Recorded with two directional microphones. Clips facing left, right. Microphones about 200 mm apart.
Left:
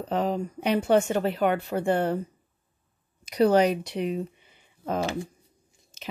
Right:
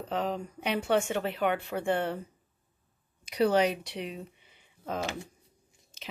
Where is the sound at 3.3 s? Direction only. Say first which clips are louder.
Left 5 dB; 40° left (ahead or behind).